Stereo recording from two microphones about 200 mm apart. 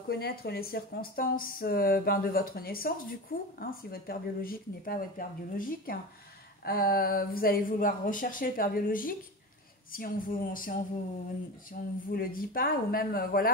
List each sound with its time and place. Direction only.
0.1 s speech: 50° left (ahead or behind)